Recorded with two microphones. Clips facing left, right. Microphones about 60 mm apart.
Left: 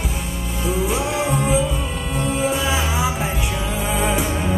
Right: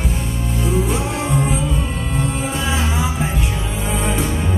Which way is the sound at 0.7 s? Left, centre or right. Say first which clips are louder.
Left 1 dB; centre.